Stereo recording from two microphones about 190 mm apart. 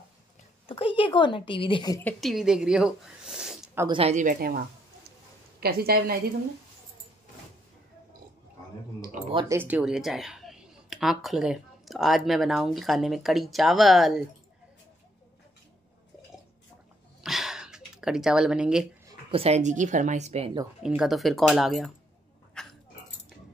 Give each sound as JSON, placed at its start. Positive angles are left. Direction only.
{"t": 0.7, "sound": "a woman's voice", "side_deg": 25}
{"t": 2.1, "sound": "speech", "side_deg": 0}
{"t": 3.8, "sound": "speech", "side_deg": -25}
{"t": 4.1, "sound": "a woman's voice", "side_deg": -45}
{"t": 9.3, "sound": "speech", "side_deg": -25}
{"t": 9.6, "sound": "speech", "side_deg": -5}
{"t": 17.2, "sound": "a sound", "side_deg": 0}
{"t": 19.3, "sound": "speech", "side_deg": -35}
{"t": 20.8, "sound": "speech", "side_deg": -5}
{"t": 22.5, "sound": "a sound", "side_deg": 5}